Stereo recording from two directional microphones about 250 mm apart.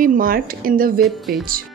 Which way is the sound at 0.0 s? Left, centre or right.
Right.